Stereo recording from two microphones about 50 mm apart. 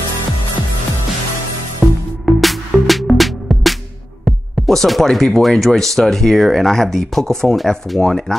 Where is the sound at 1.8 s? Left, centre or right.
Right.